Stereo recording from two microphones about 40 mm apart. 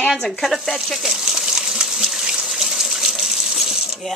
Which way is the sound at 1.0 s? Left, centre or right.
Centre.